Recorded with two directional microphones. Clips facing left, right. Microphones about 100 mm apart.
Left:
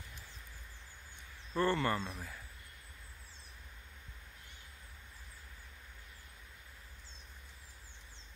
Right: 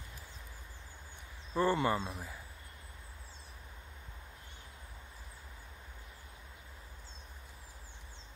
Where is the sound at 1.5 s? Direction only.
15° right (ahead or behind).